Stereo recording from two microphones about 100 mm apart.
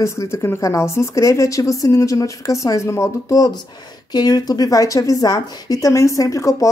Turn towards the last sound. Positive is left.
turn(degrees=30)  # may be behind; listen again after turning